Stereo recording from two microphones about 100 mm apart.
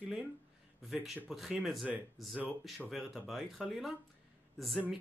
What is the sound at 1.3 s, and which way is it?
Speech, centre (ahead or behind).